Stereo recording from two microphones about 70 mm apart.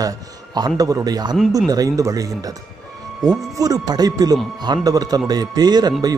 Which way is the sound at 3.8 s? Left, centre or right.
Right.